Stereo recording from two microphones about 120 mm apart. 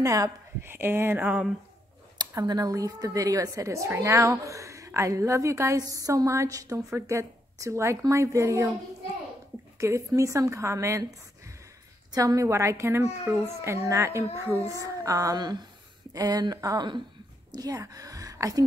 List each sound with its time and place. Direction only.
0.0 s a woman's voice: 25° right (ahead or behind); by 1.5 s 10° right (ahead or behind)
2.1 s a woman's voice: 35° right (ahead or behind)
9.8 s a woman's voice: 25° right (ahead or behind)
12.1 s a woman's voice: 30° right (ahead or behind)
13.0 s a child's voice: 5° right (ahead or behind)
13.5 s a woman's voice: 20° right (ahead or behind)